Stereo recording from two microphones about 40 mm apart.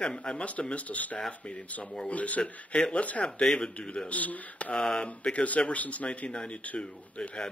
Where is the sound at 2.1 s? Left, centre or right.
Left.